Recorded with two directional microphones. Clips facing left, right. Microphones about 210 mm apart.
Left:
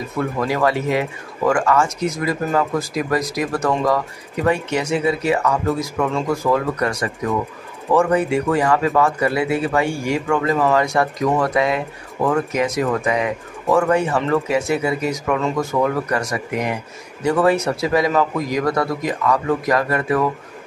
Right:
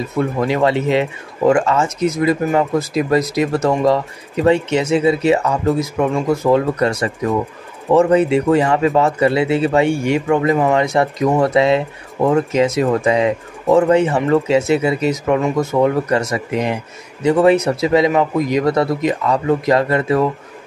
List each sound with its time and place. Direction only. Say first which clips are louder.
0.2 s speech: right 3 dB; 25° right (ahead or behind)